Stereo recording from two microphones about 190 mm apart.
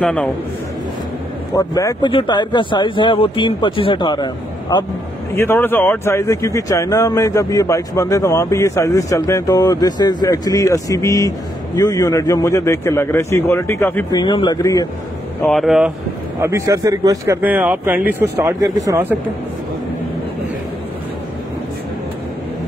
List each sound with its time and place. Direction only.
0.0 s speech: 5° left (ahead or behind)
1.6 s speech: 20° left (ahead or behind)
14.2 s speech: 25° left (ahead or behind)
15.4 s speech: centre (ahead or behind)
16.3 s speech: 15° right (ahead or behind)